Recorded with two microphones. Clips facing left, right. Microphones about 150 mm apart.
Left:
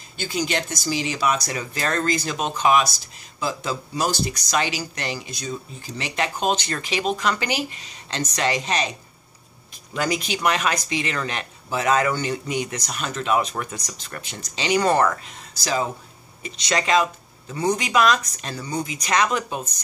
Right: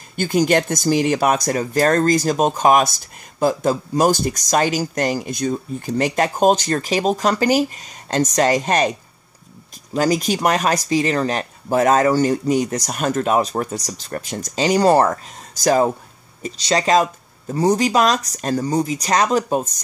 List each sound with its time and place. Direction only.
0.1 s speech: 50° right (ahead or behind)
9.9 s speech: 40° right (ahead or behind)
16.4 s speech: 35° right (ahead or behind)